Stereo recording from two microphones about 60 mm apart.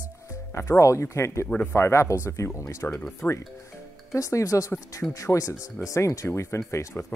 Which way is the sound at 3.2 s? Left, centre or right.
Left.